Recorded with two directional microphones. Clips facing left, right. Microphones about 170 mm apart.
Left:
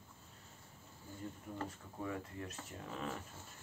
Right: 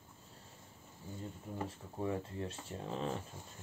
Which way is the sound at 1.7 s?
25° right (ahead or behind).